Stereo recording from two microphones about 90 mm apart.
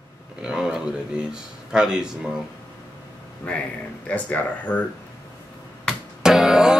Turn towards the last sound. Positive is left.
turn(degrees=-5)  # may be behind; listen again after turning